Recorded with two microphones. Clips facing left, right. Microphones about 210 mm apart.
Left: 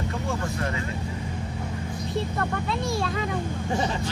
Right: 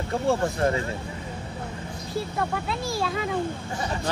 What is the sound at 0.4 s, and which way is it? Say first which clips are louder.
Speech: right 5 dB; 35° right (ahead or behind).